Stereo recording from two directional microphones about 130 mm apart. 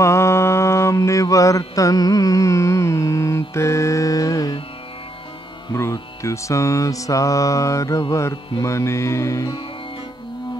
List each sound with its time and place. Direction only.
0.0 s mantra: 20° left (ahead or behind)
1.8 s carnatic music: 25° left (ahead or behind)
5.7 s mantra: 20° left (ahead or behind)